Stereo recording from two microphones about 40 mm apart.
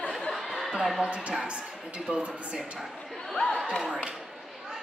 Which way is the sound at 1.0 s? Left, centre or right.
Right.